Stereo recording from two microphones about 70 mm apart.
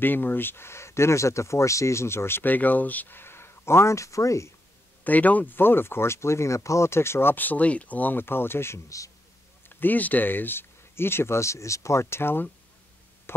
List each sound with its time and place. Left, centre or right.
0.0 s speech: left
5.0 s speech: left
9.7 s speech: left